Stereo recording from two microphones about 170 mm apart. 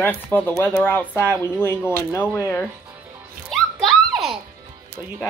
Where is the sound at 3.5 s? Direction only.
Centre (ahead or behind).